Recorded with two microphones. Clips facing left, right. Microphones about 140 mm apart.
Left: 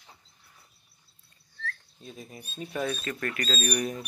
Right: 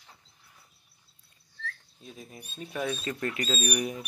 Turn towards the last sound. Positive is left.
turn(degrees=-10)  # may be behind; listen again after turning